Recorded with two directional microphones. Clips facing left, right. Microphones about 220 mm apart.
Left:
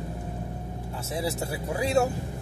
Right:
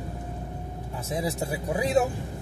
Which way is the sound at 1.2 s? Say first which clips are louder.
Even; 15° right (ahead or behind).